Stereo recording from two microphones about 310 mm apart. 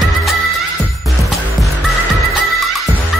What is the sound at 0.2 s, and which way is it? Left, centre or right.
Music, centre.